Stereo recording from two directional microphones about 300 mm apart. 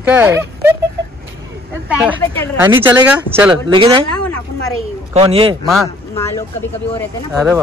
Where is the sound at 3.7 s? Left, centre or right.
Centre.